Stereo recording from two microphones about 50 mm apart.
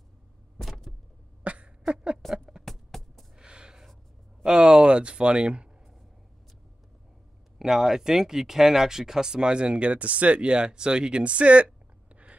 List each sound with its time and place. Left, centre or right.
0.6 s vehicle: centre
1.4 s cough: right
2.6 s a sound: centre
3.3 s a sound: centre
4.4 s speech: centre
7.5 s speech: centre; by 12.4 s right